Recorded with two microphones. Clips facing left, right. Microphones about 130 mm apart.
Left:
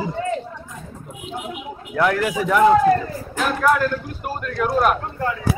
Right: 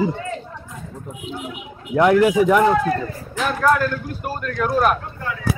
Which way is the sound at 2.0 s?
20° right (ahead or behind).